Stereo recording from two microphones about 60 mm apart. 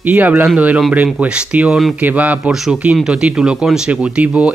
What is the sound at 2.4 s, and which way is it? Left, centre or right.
Speech, centre.